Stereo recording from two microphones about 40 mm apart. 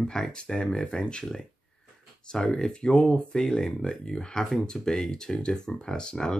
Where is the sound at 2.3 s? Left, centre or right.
Left.